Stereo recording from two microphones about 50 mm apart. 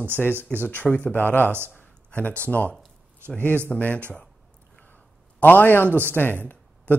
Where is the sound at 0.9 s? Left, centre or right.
Left.